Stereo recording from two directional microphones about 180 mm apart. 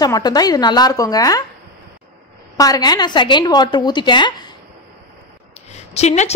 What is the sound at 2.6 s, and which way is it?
A woman's voice, 20° left (ahead or behind).